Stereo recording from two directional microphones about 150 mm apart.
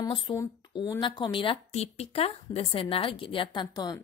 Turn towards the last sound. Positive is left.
turn(degrees=25)  # may be behind; listen again after turning